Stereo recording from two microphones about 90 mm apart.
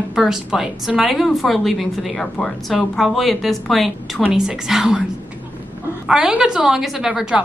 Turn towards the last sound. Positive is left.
turn(degrees=-10)  # may be behind; listen again after turning